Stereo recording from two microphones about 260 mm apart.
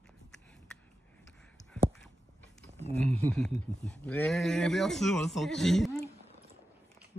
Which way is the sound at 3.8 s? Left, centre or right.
Centre.